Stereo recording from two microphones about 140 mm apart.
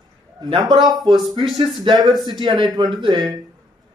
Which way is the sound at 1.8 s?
30° right (ahead or behind).